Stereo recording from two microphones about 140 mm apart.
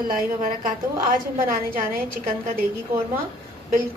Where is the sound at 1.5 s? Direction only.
90° right.